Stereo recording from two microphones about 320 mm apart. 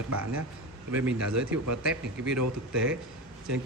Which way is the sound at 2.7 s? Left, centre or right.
Centre.